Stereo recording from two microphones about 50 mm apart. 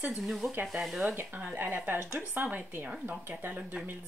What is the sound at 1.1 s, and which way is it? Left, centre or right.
Speech, right.